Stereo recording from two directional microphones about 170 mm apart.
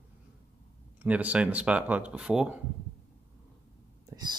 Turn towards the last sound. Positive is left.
turn(degrees=-25)  # may be behind; listen again after turning